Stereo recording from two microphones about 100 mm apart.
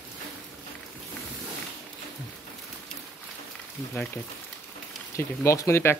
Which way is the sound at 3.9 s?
15° left (ahead or behind).